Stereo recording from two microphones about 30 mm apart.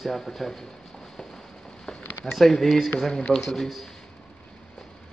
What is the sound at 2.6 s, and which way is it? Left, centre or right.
Speech, centre.